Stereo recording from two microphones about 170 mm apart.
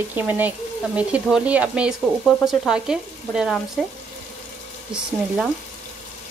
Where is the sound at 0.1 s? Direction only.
10° right (ahead or behind).